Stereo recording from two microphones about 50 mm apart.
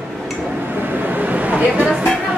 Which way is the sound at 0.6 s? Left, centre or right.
Right.